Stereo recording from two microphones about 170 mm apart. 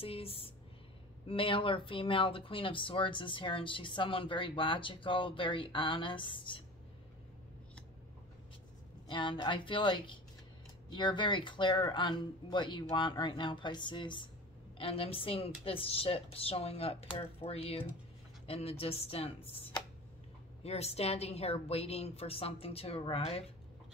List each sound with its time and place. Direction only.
0.0 s speech: 35° left (ahead or behind)
9.0 s speech: 30° left (ahead or behind)